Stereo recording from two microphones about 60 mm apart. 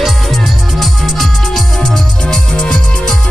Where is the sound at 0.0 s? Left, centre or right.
Centre.